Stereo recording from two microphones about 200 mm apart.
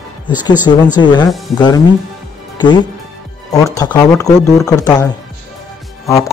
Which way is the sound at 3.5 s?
15° left (ahead or behind).